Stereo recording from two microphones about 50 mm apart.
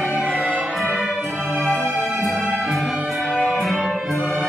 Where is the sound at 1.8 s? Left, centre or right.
Right.